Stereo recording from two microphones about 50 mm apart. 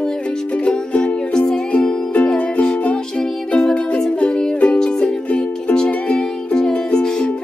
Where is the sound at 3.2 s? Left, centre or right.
Centre.